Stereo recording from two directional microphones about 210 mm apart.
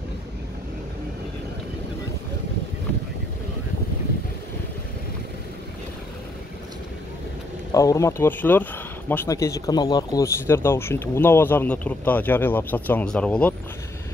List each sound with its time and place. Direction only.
7.7 s speech: 15° left (ahead or behind)